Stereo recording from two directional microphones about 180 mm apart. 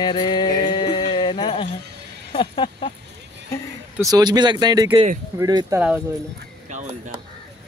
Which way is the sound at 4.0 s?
20° right (ahead or behind).